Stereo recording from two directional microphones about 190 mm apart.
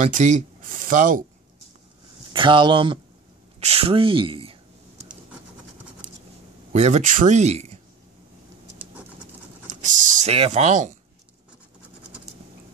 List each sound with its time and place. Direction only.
0.0 s speech: 40° right (ahead or behind)
2.3 s speech: 25° right (ahead or behind)
3.5 s a sound: 30° right (ahead or behind)
6.7 s speech: 35° right (ahead or behind)
9.7 s speech: 40° right (ahead or behind)